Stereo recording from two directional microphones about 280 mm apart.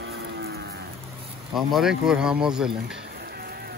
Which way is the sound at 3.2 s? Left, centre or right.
Right.